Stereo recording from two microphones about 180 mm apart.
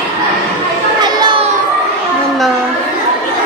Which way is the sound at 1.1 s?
25° right (ahead or behind).